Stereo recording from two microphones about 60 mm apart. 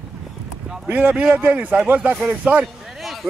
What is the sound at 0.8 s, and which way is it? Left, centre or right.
A man's voice, right.